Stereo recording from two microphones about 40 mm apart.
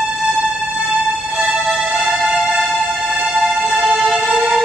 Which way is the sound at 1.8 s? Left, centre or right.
Centre.